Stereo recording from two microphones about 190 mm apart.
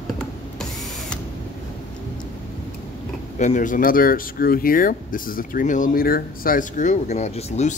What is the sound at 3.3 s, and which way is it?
Speech, 40° left (ahead or behind).